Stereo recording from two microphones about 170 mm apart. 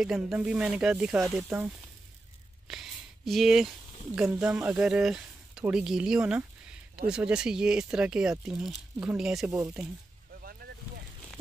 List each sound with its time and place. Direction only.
0.0 s speech: 5° right (ahead or behind)
2.7 s speech: centre (ahead or behind)
10.6 s vehicle: 55° right (ahead or behind)